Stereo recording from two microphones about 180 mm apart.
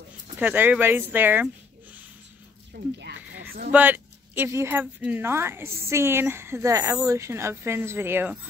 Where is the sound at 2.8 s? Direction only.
60° right (ahead or behind).